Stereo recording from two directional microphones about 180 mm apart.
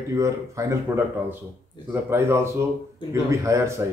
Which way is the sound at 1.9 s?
10° right (ahead or behind).